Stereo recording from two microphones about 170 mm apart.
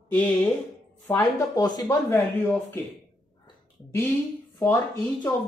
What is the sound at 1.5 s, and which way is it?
Speech, 25° left (ahead or behind).